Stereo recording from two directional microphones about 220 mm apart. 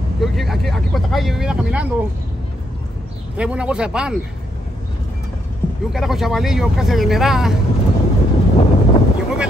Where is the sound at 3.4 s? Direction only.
5° right (ahead or behind).